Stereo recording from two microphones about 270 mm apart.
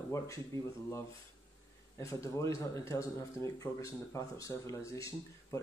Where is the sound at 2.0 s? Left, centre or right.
Centre.